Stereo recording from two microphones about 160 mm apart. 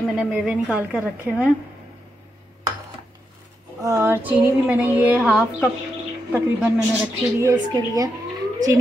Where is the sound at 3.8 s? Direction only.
20° right (ahead or behind).